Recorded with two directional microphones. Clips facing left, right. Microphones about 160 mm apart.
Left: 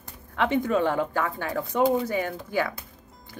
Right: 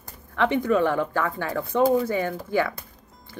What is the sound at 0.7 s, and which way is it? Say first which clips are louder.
Speech: right 2 dB; 15° left (ahead or behind).